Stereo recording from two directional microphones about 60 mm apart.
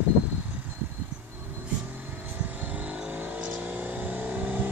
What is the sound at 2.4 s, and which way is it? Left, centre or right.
Vehicle, right.